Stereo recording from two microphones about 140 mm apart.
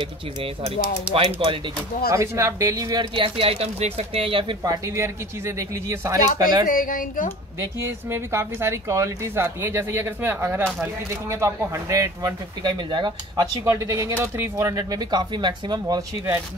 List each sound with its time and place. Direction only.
0.0 s speech: 40° right (ahead or behind)
2.0 s a woman's voice: 20° right (ahead or behind)
3.2 s speech: 40° right (ahead or behind)
4.8 s a woman's voice: 20° right (ahead or behind)
6.7 s speech: 80° left
7.8 s a woman's voice: 20° right (ahead or behind)